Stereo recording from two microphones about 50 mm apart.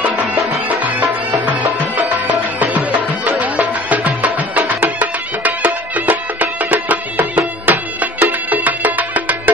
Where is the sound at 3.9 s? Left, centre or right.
Right.